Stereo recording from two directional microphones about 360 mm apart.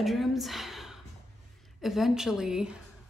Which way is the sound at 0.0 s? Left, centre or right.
Centre.